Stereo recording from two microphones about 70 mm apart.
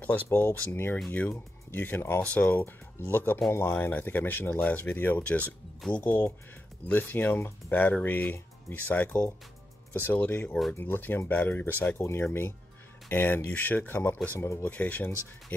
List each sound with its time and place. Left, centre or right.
0.0 s speech: left
12.0 s speech: left
14.4 s speech: left
14.7 s speech: left